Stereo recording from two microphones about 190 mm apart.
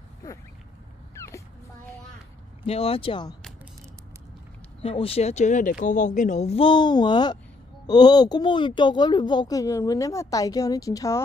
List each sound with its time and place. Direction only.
1.1 s a sound: 15° left (ahead or behind)
2.6 s a woman's voice: 30° left (ahead or behind)
4.8 s a woman's voice: 30° left (ahead or behind)